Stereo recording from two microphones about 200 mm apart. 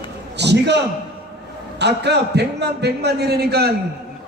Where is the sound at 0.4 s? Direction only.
60° right (ahead or behind).